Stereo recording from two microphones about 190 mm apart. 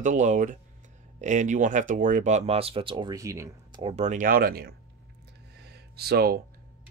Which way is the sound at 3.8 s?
35° right (ahead or behind).